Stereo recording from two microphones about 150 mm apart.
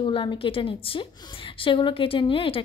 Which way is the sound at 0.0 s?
35° left (ahead or behind).